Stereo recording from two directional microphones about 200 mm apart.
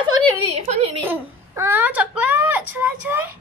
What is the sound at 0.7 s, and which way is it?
Speech, 30° right (ahead or behind).